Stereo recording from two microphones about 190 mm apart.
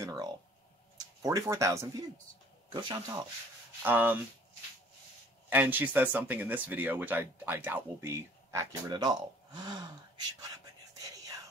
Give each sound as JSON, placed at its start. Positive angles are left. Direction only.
{"t": 0.0, "sound": "speech", "side_deg": -15}
{"t": 3.8, "sound": "speech", "side_deg": -10}
{"t": 5.5, "sound": "speech", "side_deg": -10}